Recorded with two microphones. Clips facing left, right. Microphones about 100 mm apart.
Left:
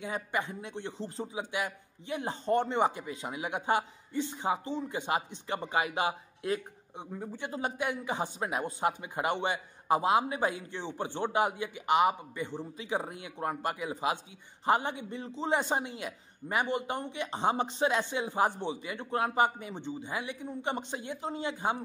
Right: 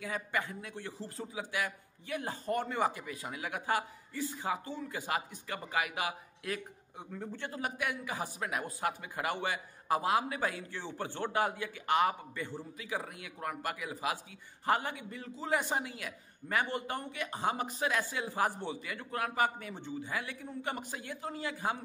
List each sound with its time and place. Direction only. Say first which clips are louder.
0.0 s a man's voice: left 2 dB; 20° left (ahead or behind)